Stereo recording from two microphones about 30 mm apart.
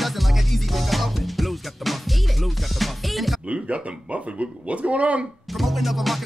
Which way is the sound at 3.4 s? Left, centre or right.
Right.